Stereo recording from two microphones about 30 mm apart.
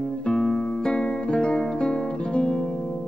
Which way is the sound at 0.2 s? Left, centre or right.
Left.